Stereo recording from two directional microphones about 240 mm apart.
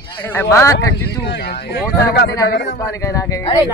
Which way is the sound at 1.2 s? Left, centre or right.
Left.